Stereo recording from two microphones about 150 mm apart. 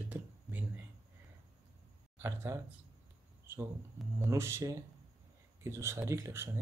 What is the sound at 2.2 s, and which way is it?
Speech, 20° right (ahead or behind).